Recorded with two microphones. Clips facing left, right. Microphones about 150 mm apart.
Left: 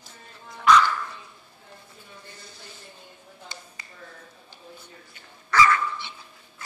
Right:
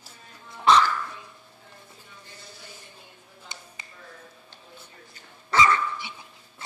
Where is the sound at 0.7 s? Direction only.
25° right (ahead or behind).